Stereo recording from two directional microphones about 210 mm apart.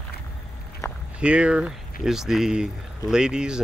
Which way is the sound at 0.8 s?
15° left (ahead or behind).